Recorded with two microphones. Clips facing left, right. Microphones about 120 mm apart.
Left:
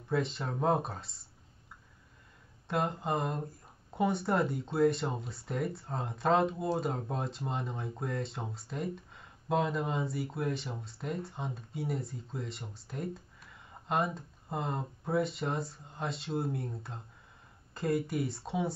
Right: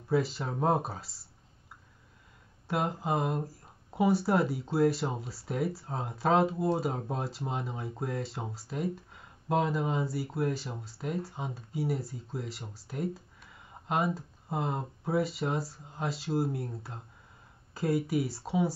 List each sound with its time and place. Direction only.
0.1 s speech: 5° right (ahead or behind)
2.7 s speech: 5° right (ahead or behind)